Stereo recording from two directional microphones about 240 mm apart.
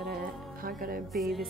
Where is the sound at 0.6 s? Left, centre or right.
Right.